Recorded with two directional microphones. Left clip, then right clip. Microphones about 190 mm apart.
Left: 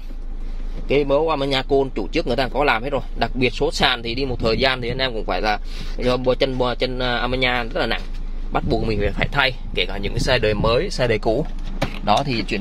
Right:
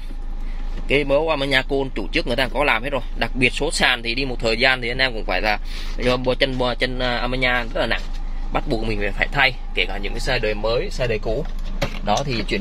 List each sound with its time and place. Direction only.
0.8 s speech: 10° left (ahead or behind); by 11.3 s 25° left (ahead or behind)
12.0 s speech: 10° left (ahead or behind)